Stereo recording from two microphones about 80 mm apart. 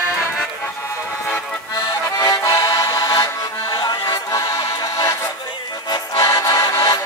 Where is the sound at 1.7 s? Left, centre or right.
Left.